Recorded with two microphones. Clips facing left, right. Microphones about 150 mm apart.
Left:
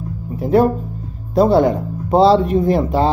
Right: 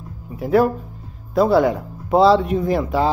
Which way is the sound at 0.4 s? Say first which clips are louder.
Left 2 dB; 30° left (ahead or behind).